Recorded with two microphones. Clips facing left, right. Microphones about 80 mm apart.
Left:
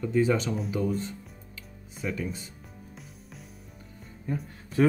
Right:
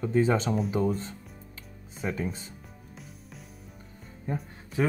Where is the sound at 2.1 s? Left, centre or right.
Right.